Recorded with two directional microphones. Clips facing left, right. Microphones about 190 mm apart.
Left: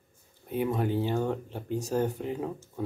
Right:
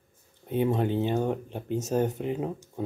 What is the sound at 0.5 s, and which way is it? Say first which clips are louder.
Speech: right 3 dB; 25° right (ahead or behind).